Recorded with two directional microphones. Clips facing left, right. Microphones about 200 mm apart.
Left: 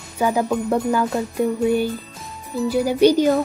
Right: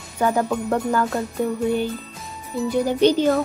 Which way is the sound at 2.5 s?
5° left (ahead or behind).